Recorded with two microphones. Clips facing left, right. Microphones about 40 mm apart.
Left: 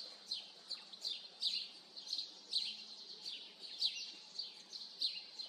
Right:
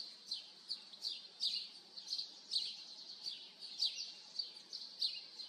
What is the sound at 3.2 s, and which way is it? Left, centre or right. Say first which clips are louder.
Bird: even; left.